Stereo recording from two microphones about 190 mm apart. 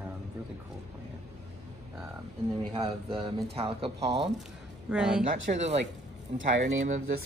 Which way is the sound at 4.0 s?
65° right (ahead or behind).